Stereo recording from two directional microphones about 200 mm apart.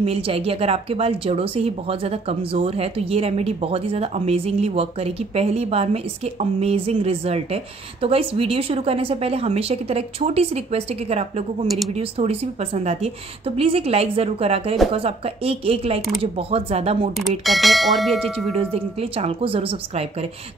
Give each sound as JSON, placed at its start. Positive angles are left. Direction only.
{"t": 0.0, "sound": "speech", "side_deg": -30}
{"t": 11.6, "sound": "speech", "side_deg": 0}
{"t": 12.0, "sound": "speech", "side_deg": -30}
{"t": 17.5, "sound": "speech", "side_deg": 0}
{"t": 18.2, "sound": "speech", "side_deg": -30}